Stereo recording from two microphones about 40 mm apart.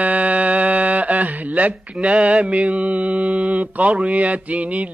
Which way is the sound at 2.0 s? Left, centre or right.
Right.